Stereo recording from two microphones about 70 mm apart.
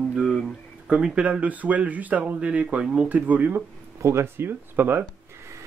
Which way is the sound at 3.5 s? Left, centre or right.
Right.